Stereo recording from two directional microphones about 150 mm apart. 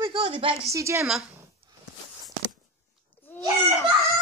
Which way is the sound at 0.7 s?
20° right (ahead or behind).